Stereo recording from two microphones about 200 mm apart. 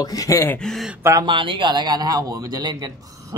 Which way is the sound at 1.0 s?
20° right (ahead or behind).